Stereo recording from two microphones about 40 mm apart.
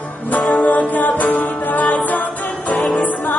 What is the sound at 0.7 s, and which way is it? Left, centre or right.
Music, left.